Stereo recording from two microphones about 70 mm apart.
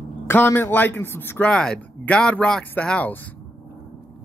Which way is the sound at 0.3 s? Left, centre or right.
Left.